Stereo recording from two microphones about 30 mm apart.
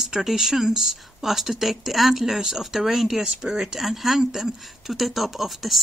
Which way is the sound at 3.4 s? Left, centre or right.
Centre.